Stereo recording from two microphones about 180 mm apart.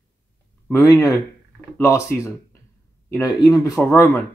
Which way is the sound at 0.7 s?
20° left (ahead or behind).